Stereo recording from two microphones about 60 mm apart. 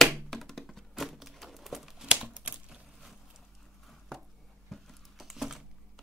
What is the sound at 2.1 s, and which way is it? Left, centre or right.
Typewriter, centre.